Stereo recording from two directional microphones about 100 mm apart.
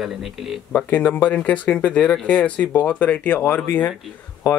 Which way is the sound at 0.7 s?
20° left (ahead or behind).